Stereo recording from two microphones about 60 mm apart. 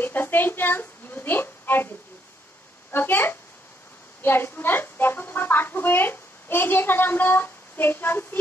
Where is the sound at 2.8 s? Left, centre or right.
Left.